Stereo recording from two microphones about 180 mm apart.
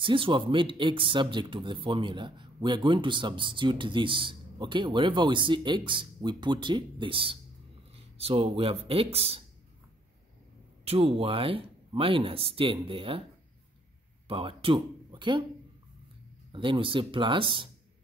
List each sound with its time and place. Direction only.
0.0 s speech: 30° right (ahead or behind)
10.9 s speech: 30° right (ahead or behind)
14.2 s speech: 30° right (ahead or behind)
16.5 s speech: 30° right (ahead or behind)